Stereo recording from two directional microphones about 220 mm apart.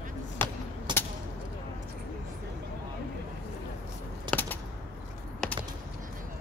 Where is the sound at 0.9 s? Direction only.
20° right (ahead or behind).